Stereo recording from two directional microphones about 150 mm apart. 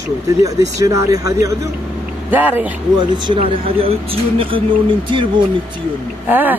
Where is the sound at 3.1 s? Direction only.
30° right (ahead or behind).